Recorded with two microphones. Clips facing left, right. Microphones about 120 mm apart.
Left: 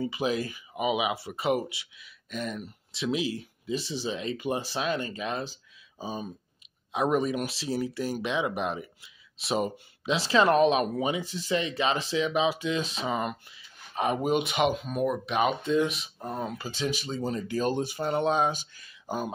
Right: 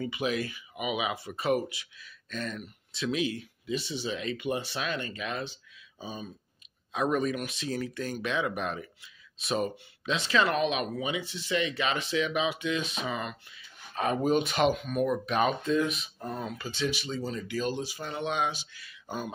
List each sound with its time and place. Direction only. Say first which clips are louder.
0.0 s speech: left 2 dB; 30° left (ahead or behind)
2.2 s speech: left 2 dB; 15° left (ahead or behind)
3.0 s speech: left 1 dB; 25° left (ahead or behind)
6.9 s speech: left 2 dB; 20° left (ahead or behind)
14.7 s speech: right 1 dB; 30° left (ahead or behind)
15.0 s speech: left 2 dB; 10° left (ahead or behind)
15.6 s speech: left 2 dB; 25° left (ahead or behind)
16.2 s speech: left 6 dB; 15° left (ahead or behind)
16.5 s speech: left 1 dB; 35° left (ahead or behind)
17.6 s speech: left 4 dB; 50° left (ahead or behind)
18.0 s speech: left 6 dB; 35° left (ahead or behind)